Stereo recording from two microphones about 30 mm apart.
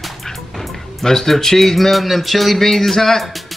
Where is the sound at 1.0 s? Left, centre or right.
Centre.